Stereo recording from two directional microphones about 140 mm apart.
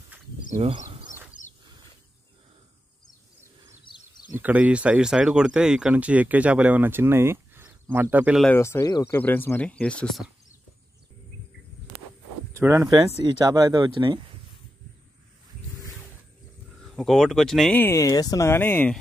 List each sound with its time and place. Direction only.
0.6 s speech: 40° right (ahead or behind)
3.9 s a sound: 35° left (ahead or behind)
4.4 s speech: 10° right (ahead or behind)
8.5 s speech: 20° left (ahead or behind); by 10.3 s centre (ahead or behind)
12.5 s speech: 20° right (ahead or behind); by 14.2 s 35° right (ahead or behind)
16.8 s speech: centre (ahead or behind)
17.7 s speech: 20° left (ahead or behind)